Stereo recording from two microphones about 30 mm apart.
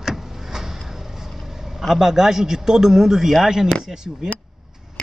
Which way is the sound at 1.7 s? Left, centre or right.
Centre.